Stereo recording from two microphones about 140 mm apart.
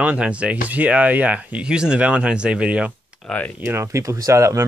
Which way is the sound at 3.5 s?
15° right (ahead or behind).